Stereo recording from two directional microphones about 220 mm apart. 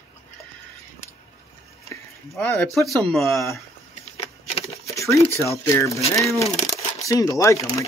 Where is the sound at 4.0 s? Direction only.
30° left (ahead or behind).